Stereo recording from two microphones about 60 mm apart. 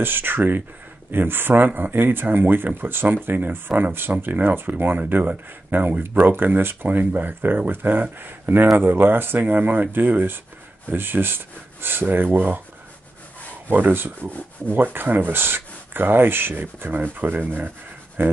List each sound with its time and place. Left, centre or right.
0.0 s speech: right
13.7 s speech: right